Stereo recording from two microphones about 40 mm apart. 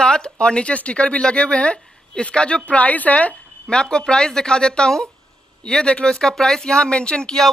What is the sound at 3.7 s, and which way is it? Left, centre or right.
Speech, left.